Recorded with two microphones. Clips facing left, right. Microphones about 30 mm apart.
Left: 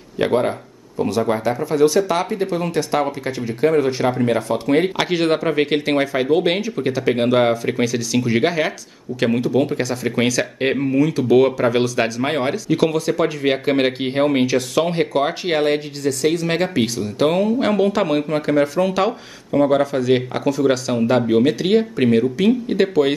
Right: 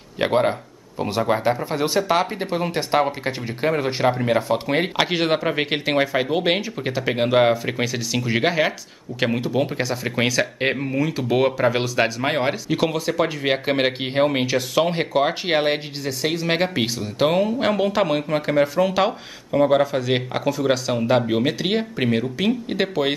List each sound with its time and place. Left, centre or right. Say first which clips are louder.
0.3 s speech: right 2 dB; right
3.7 s speech: left 3 dB; centre